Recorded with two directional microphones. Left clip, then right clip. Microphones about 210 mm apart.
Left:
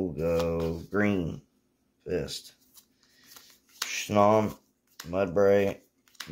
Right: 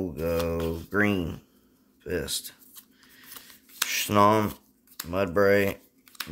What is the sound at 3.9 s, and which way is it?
Speech, 20° right (ahead or behind).